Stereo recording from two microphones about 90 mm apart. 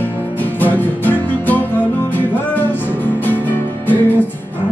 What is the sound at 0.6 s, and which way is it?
Music, 20° left (ahead or behind).